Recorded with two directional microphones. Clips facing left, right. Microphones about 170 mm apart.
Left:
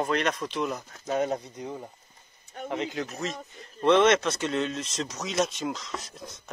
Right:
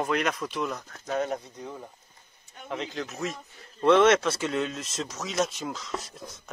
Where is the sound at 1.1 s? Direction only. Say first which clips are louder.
Left 2 dB; 20° left (ahead or behind).